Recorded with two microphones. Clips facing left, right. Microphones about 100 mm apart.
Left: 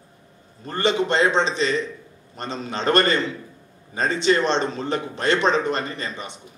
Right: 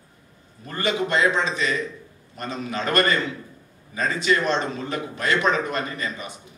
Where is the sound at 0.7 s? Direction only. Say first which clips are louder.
Left 3 dB; 30° left (ahead or behind).